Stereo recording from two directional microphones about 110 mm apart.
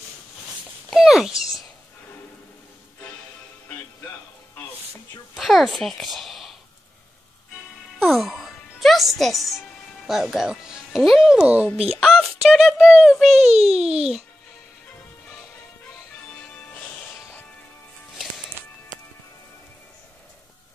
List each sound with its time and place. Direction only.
0.8 s a sound: centre (ahead or behind)
5.3 s a sound: centre (ahead or behind)
8.0 s music: centre (ahead or behind)
10.0 s speech: centre (ahead or behind)
12.0 s speech: centre (ahead or behind)
13.4 s a child's voice: 75° right (ahead or behind)